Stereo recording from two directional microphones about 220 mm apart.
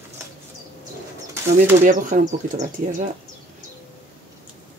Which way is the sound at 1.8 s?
35° right (ahead or behind).